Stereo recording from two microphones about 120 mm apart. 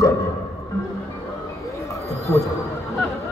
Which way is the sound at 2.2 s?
25° left (ahead or behind).